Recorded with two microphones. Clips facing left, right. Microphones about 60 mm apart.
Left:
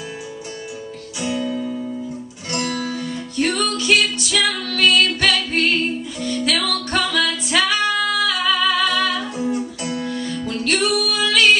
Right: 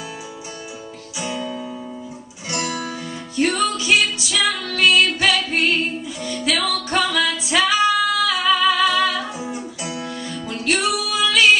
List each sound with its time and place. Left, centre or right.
1.2 s music: centre